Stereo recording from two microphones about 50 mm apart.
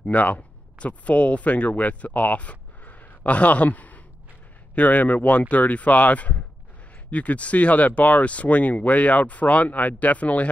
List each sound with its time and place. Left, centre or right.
0.0 s speech: left